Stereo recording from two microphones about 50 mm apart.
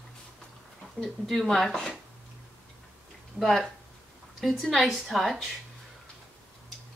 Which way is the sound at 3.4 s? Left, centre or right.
Centre.